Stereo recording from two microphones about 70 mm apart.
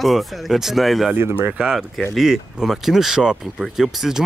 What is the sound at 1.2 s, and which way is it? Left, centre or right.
Speech, right.